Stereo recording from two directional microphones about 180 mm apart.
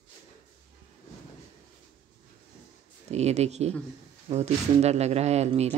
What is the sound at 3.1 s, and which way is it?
Speech, 35° right (ahead or behind).